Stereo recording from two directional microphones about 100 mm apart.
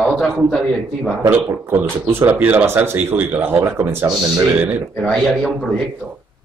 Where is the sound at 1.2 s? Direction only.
25° right (ahead or behind).